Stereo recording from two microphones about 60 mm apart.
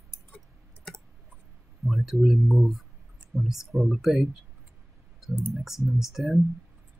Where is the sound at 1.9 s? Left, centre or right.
Centre.